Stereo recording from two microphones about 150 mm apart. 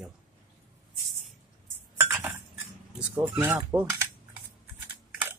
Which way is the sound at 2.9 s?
5° right (ahead or behind).